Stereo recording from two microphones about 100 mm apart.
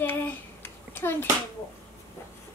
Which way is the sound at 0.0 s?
20° left (ahead or behind).